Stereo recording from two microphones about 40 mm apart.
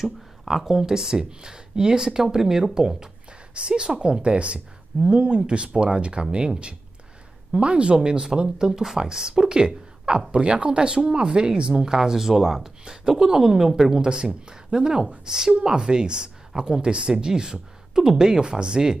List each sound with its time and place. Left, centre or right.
0.0 s speech: centre
14.0 s speech: right